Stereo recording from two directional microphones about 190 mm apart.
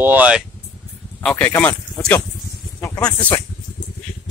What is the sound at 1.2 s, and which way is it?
Speech, 5° left (ahead or behind).